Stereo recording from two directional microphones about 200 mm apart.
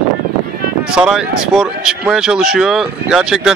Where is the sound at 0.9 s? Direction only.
5° right (ahead or behind).